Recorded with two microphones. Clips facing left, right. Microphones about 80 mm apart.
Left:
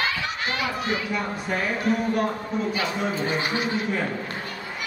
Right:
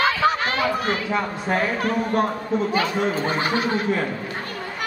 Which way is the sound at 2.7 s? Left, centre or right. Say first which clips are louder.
Right 5 dB; right.